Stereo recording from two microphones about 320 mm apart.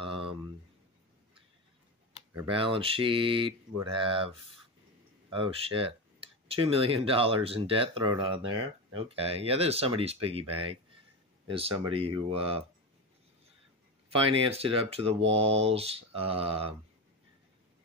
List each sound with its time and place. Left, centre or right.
0.0 s a sound: centre
2.4 s speech: centre
14.1 s speech: centre